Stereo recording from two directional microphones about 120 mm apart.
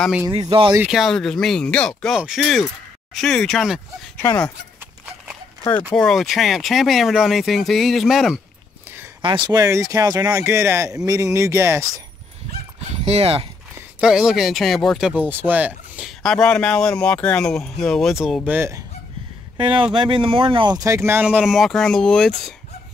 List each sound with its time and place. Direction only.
0.3 s speech: 40° right (ahead or behind)
0.8 s speech: centre (ahead or behind)
4.2 s speech: 25° left (ahead or behind)
5.9 s speech: centre (ahead or behind)
9.2 s speech: 40° right (ahead or behind)
9.6 s speech: 25° right (ahead or behind)
10.4 s speech: 20° right (ahead or behind)
12.9 s speech: 60° right (ahead or behind)
13.9 s speech: 5° right (ahead or behind)
15.0 s speech: 15° right (ahead or behind)
16.2 s speech: 5° left (ahead or behind); by 18.7 s 10° right (ahead or behind)
19.6 s speech: 45° right (ahead or behind)
20.8 s speech: 25° right (ahead or behind); by 22.3 s 5° left (ahead or behind)